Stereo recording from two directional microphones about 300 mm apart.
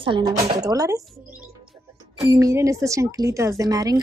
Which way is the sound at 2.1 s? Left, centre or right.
Centre.